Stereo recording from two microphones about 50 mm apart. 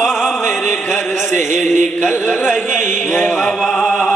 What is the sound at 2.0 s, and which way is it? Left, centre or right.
Speech, left.